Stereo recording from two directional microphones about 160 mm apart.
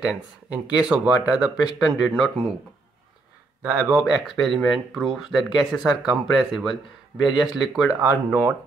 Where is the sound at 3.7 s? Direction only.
10° right (ahead or behind).